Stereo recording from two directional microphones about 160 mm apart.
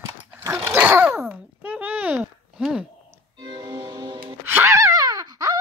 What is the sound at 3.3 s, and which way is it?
Music, 25° right (ahead or behind).